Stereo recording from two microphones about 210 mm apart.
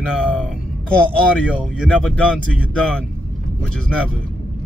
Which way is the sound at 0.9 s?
5° left (ahead or behind).